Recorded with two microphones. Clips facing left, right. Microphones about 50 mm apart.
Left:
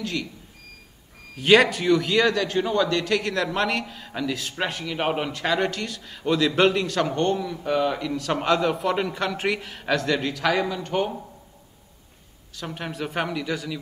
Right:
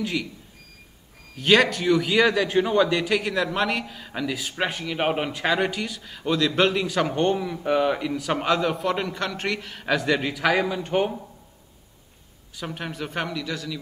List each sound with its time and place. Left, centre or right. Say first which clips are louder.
0.0 s a man's voice: right 2 dB; centre
1.3 s a man's voice: left 2 dB; centre
12.5 s speech: even; centre
13.4 s a man's voice: left 2 dB; centre